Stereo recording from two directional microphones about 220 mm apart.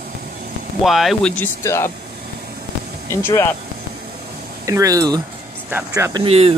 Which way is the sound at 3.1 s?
10° left (ahead or behind).